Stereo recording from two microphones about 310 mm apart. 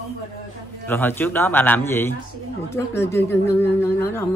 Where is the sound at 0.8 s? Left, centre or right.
Centre.